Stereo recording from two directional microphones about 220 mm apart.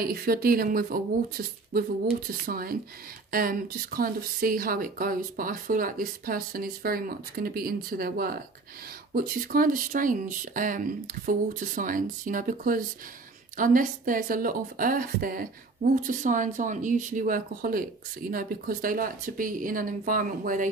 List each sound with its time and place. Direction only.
0.0 s speech: 45° right (ahead or behind)